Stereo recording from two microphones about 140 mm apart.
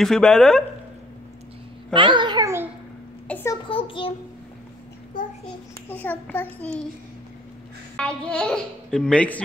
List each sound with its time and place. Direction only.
0.0 s speech: 5° left (ahead or behind)
2.0 s a child's voice: 35° right (ahead or behind)
3.3 s a sound: 15° left (ahead or behind)
3.6 s a child's voice: 40° left (ahead or behind)
5.9 s speech: 10° left (ahead or behind)
7.9 s speech: 5° left (ahead or behind)